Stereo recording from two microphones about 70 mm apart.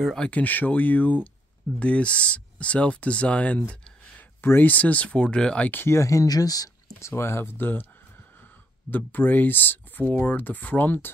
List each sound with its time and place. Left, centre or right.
0.2 s speech: left
4.4 s speech: left; by 5.7 s centre
5.7 s speech: left
5.9 s speech: left
7.0 s speech: left
8.9 s speech: left